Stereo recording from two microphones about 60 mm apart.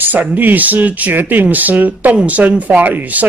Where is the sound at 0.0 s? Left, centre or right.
Right.